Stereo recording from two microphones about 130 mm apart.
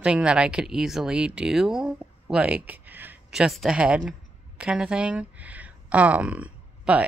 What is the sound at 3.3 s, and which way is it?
Speech, centre (ahead or behind).